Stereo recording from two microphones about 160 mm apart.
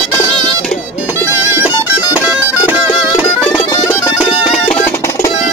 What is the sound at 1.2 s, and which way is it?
Music, 15° right (ahead or behind).